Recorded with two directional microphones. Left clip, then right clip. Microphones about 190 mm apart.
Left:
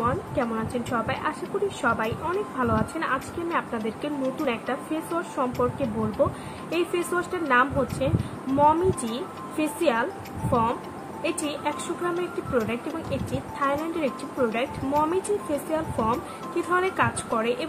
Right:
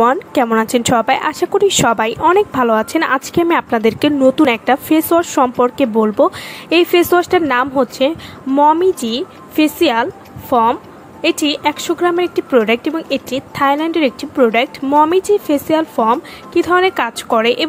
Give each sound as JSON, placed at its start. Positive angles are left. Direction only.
{"t": 0.0, "sound": "speech", "side_deg": -60}
{"t": 8.5, "sound": "speech", "side_deg": -45}